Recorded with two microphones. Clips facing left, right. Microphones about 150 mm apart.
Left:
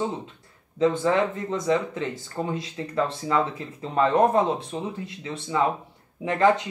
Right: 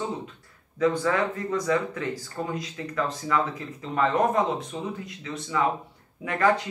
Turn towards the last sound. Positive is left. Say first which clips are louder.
# left 3 dB
turn(degrees=20)  # may be behind; listen again after turning